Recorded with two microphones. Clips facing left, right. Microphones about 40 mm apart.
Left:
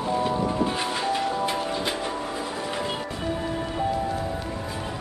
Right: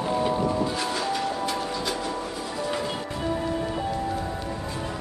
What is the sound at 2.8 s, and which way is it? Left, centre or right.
Music, left.